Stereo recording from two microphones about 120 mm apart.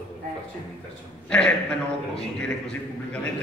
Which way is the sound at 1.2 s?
10° left (ahead or behind).